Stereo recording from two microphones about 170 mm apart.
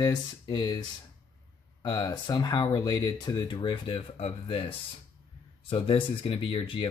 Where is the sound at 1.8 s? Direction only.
25° left (ahead or behind).